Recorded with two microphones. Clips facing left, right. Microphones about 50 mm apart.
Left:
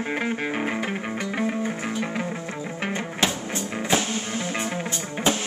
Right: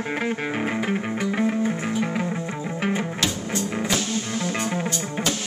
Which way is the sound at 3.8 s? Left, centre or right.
Left.